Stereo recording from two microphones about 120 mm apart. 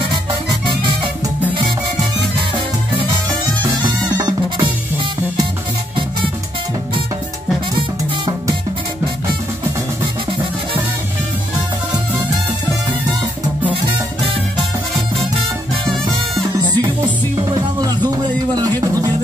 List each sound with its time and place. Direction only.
3.8 s music: 35° right (ahead or behind)
16.5 s music: 40° right (ahead or behind)